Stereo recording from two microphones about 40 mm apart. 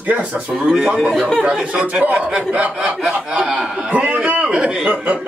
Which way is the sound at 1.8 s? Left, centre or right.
Right.